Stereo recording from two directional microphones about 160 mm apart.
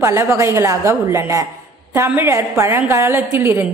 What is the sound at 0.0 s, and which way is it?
A man's voice, 15° right (ahead or behind).